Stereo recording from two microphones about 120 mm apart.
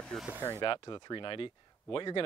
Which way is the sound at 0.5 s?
35° left (ahead or behind).